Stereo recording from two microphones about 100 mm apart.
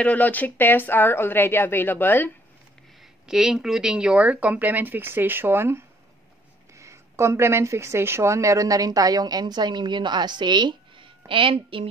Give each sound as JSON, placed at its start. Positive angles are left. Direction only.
{"t": 0.0, "sound": "a woman's voice", "side_deg": 15}
{"t": 3.0, "sound": "speech", "side_deg": -5}